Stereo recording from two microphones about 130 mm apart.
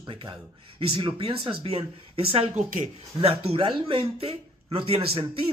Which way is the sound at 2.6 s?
90° right.